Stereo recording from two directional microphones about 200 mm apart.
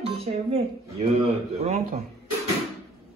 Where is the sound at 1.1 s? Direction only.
30° right (ahead or behind).